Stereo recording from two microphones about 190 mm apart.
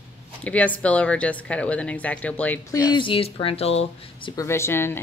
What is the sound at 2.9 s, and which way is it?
Speech, 25° left (ahead or behind).